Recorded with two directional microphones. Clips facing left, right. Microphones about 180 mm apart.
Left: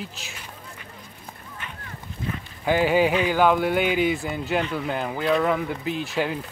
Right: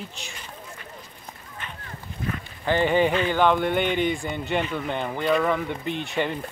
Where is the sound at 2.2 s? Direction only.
25° left (ahead or behind).